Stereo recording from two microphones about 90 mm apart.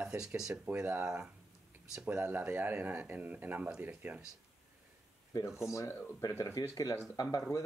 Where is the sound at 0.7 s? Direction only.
20° right (ahead or behind).